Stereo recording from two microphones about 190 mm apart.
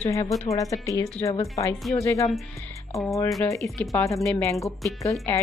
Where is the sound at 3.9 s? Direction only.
15° left (ahead or behind).